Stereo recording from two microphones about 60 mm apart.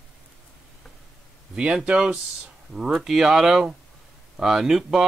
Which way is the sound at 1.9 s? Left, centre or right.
Right.